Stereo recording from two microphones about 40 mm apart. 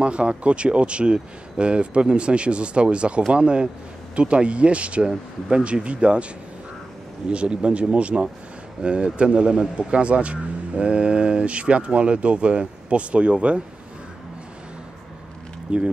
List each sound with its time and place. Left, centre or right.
0.0 s speech: right
7.2 s speech: right
15.7 s speech: right